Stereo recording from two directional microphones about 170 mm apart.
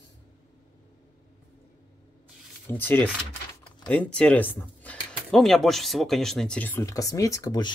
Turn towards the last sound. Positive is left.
turn(degrees=25)  # may be behind; listen again after turning